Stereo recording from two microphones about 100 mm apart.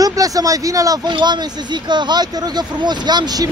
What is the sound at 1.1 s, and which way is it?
Speech, 50° right (ahead or behind).